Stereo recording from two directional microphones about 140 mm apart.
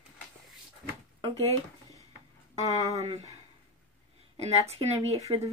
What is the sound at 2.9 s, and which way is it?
Speech, 50° right (ahead or behind).